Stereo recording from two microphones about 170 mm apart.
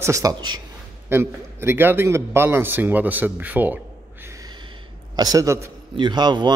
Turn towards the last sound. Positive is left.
turn(degrees=-25)  # may be behind; listen again after turning